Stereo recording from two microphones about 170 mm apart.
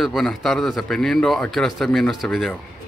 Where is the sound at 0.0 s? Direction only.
Centre (ahead or behind).